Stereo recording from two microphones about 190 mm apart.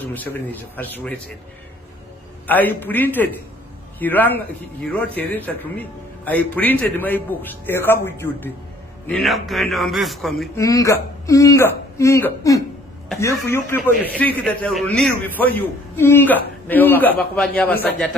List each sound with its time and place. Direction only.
0.0 s a man's voice: 10° left (ahead or behind)
2.4 s a man's voice: 10° left (ahead or behind)
10.5 s a man's voice: 15° left (ahead or behind)